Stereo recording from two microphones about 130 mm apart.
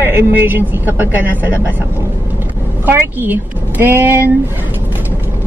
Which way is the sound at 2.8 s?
15° right (ahead or behind).